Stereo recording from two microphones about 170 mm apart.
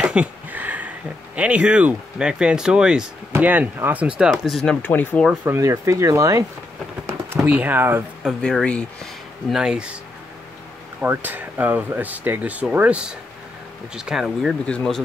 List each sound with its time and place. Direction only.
0.0 s speech: 5° right (ahead or behind)
5.2 s speech: 5° right (ahead or behind)
11.0 s speech: 10° right (ahead or behind)